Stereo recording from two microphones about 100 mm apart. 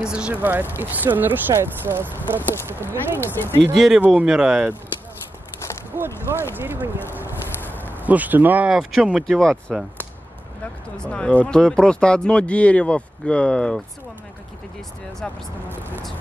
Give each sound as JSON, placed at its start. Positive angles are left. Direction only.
{"t": 0.0, "sound": "speech", "side_deg": -10}
{"t": 3.3, "sound": "speech", "side_deg": 20}
{"t": 3.7, "sound": "speech", "side_deg": 0}
{"t": 5.9, "sound": "speech", "side_deg": -25}
{"t": 8.0, "sound": "speech", "side_deg": -15}
{"t": 11.0, "sound": "speech", "side_deg": 10}